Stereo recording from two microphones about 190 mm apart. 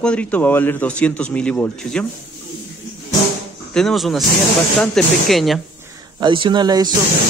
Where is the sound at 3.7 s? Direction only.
Centre (ahead or behind).